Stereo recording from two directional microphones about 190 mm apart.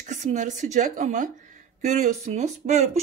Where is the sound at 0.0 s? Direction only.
40° right (ahead or behind).